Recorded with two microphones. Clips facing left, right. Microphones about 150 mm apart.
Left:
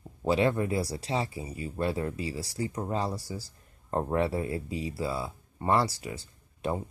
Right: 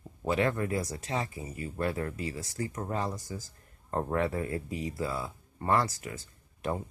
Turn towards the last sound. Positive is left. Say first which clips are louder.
# left 2 dB
turn(degrees=20)  # may be behind; listen again after turning